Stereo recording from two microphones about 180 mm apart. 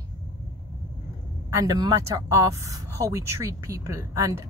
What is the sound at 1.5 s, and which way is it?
Speech, 20° right (ahead or behind).